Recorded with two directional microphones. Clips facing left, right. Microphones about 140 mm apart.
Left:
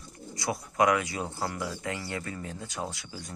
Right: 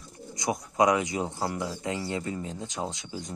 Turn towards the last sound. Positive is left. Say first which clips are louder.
# right 3 dB
turn(degrees=-20)  # may be behind; listen again after turning